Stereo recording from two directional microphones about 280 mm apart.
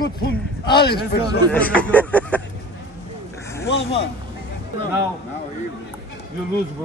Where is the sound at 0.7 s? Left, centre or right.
Left.